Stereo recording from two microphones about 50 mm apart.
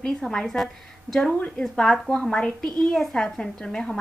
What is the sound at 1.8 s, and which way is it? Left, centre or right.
A woman's voice, centre.